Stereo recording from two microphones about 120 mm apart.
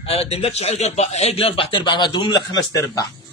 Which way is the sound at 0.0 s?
55° left (ahead or behind).